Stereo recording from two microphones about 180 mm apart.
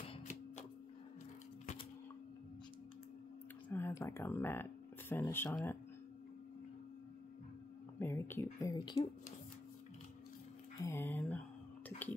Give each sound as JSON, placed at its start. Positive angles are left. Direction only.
{"t": 3.6, "sound": "speech", "side_deg": 10}
{"t": 8.0, "sound": "speech", "side_deg": 15}
{"t": 10.8, "sound": "speech", "side_deg": 15}